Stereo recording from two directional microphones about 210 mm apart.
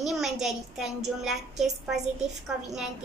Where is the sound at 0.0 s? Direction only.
Centre (ahead or behind).